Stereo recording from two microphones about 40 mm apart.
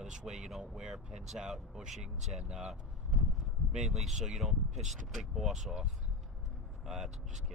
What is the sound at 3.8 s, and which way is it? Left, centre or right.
Speech, centre.